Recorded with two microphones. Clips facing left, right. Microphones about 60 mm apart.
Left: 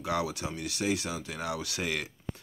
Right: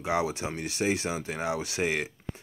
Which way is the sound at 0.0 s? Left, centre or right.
Right.